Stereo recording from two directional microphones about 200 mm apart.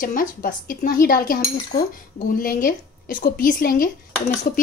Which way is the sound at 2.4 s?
45° left (ahead or behind).